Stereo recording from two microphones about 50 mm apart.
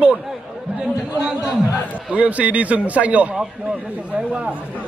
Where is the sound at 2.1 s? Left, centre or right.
Right.